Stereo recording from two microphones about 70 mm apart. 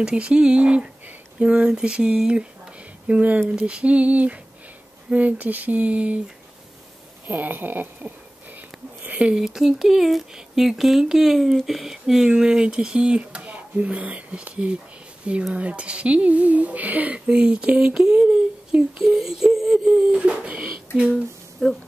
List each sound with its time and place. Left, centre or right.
0.0 s speech: centre
7.2 s speech: right
8.5 s a sound: right
9.3 s speech: centre; by 17.2 s right
17.3 s speech: centre
21.1 s speech: centre